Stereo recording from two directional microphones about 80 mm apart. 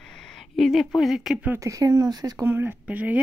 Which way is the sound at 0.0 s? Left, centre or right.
Centre.